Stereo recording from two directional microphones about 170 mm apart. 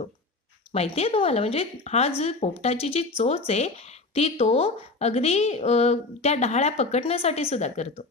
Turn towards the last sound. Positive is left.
turn(degrees=40)  # may be behind; listen again after turning